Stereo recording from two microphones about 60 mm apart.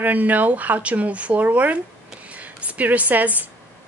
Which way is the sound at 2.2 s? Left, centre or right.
Right.